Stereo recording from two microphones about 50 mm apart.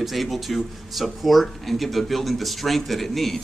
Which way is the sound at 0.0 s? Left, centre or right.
Centre.